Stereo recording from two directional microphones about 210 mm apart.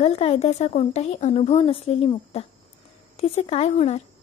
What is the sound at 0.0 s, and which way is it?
A woman's voice, 30° left (ahead or behind).